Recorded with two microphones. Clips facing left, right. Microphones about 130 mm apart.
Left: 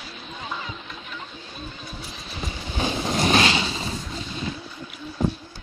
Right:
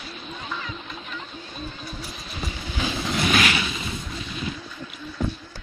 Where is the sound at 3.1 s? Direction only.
30° left (ahead or behind).